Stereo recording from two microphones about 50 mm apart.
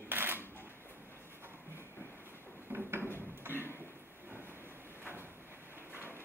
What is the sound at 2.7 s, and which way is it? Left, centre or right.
Drawer open or close, right.